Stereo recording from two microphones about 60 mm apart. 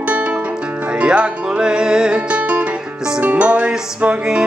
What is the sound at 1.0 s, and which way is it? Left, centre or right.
Music, centre.